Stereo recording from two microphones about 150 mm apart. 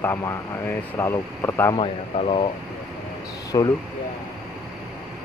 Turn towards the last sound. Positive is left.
turn(degrees=25)  # may be behind; listen again after turning